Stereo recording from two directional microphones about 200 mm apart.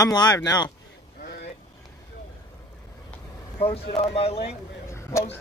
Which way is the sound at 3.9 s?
30° left (ahead or behind).